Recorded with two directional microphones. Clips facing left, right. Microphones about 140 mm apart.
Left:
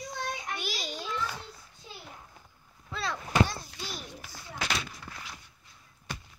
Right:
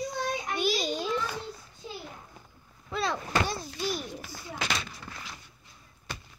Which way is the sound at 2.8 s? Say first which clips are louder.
Right 4 dB; 20° right (ahead or behind).